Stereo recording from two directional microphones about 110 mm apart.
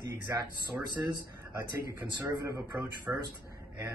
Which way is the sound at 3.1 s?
10° right (ahead or behind).